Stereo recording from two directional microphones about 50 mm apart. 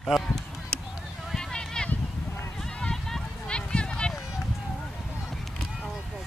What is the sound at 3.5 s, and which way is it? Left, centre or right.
Run, centre.